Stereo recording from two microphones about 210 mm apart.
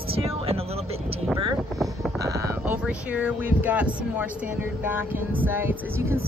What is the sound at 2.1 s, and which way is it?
Speech, 15° right (ahead or behind).